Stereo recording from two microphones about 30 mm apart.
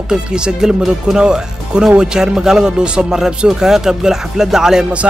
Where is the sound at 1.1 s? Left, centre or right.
Right.